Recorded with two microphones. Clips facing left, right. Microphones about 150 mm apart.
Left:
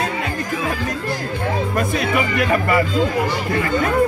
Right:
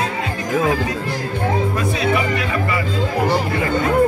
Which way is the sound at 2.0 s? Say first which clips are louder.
Right 2 dB; 50° left (ahead or behind).